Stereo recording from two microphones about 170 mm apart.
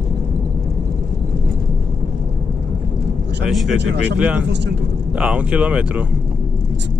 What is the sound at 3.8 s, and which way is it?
Speech, 90° right.